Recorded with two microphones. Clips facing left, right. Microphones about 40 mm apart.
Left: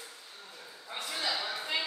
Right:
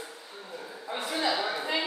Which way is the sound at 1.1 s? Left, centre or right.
Right.